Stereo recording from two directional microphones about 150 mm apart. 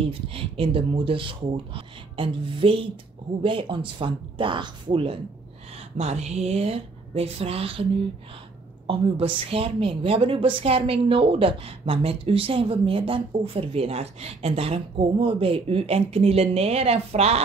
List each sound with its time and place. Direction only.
0.0 s a woman's voice: 40° right (ahead or behind)
5.9 s a woman's voice: 45° right (ahead or behind)
8.8 s a woman's voice: 35° right (ahead or behind)